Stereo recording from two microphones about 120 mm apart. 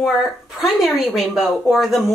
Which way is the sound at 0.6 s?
Centre (ahead or behind).